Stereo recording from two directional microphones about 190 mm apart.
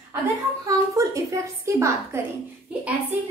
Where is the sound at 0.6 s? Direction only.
15° right (ahead or behind).